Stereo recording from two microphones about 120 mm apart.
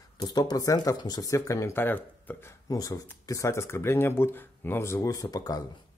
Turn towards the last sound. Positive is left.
turn(degrees=30)  # may be behind; listen again after turning